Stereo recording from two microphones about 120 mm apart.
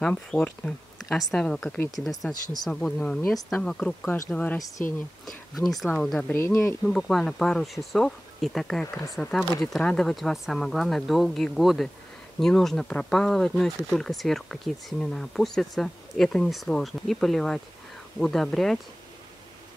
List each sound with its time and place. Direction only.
0.3 s speech: 5° left (ahead or behind)
4.6 s speech: 25° left (ahead or behind)
5.2 s speech: centre (ahead or behind)
6.2 s speech: 20° left (ahead or behind)
6.8 s speech: centre (ahead or behind)